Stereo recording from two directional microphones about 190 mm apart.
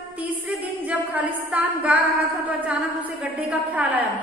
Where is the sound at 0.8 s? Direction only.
5° right (ahead or behind).